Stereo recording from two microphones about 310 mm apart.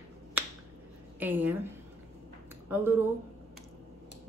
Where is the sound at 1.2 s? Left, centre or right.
Centre.